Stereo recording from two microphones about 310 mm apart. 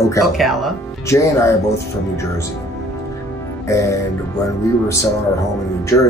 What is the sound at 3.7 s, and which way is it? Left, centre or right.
Music, centre.